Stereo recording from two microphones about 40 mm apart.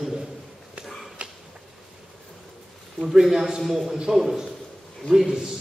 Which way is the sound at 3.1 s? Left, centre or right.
Centre.